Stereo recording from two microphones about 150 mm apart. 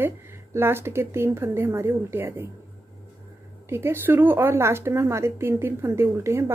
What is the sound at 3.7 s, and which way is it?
Speech, 15° right (ahead or behind).